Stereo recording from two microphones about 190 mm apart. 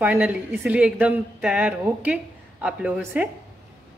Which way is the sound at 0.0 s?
5° right (ahead or behind).